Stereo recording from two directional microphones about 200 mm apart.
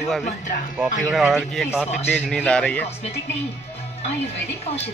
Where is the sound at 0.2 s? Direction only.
40° left (ahead or behind).